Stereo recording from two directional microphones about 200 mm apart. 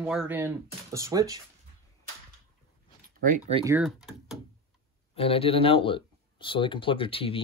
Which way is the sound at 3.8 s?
Centre (ahead or behind).